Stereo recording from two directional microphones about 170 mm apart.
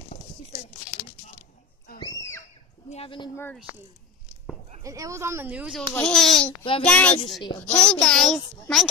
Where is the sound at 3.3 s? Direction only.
10° left (ahead or behind).